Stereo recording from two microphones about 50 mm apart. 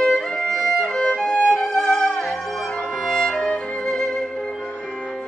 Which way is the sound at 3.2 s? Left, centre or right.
Centre.